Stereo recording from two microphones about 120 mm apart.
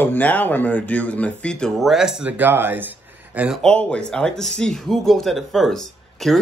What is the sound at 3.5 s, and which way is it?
Speech, 10° left (ahead or behind).